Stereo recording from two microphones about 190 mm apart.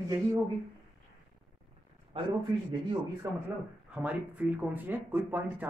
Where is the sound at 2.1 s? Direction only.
25° right (ahead or behind).